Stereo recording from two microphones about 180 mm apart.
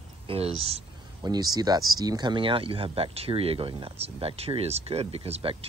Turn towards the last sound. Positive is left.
turn(degrees=-35)  # may be behind; listen again after turning